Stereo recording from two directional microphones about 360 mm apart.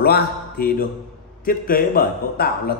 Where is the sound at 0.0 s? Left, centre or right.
Left.